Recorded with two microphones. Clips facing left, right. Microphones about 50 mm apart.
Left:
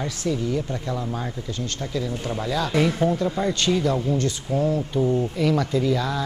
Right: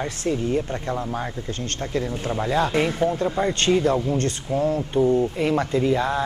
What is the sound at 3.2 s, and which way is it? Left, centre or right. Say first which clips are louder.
Speech: right 1 dB; right.